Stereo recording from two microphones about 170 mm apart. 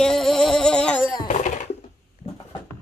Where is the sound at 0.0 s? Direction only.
Centre (ahead or behind).